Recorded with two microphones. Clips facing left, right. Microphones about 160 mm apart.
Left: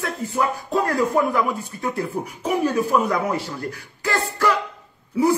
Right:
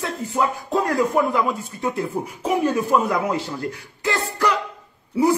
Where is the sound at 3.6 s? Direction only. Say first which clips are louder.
Right 2 dB; 20° right (ahead or behind).